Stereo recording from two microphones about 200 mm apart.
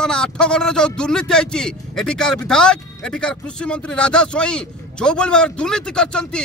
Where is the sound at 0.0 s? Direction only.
5° left (ahead or behind).